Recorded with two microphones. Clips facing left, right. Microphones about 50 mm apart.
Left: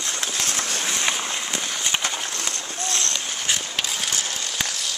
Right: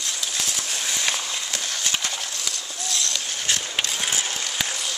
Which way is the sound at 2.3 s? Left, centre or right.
Left.